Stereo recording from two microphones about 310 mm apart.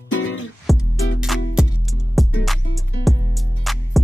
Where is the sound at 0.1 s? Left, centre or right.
Left.